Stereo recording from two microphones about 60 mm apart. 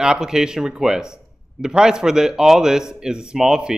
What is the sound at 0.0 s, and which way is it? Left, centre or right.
Speech, centre.